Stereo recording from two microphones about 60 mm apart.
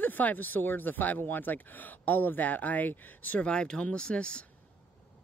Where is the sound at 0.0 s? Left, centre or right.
Left.